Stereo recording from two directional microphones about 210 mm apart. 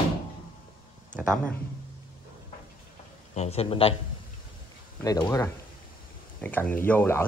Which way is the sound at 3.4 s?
30° left (ahead or behind).